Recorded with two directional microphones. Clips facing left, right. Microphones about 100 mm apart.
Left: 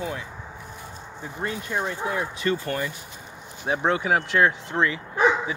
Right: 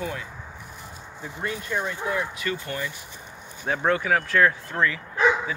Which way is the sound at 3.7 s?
20° left (ahead or behind).